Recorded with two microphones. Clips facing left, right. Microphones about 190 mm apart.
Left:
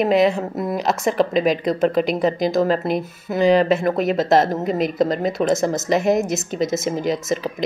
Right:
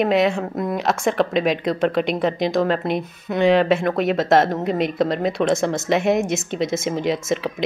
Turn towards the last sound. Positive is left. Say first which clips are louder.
# even
turn(degrees=0)  # may be behind; listen again after turning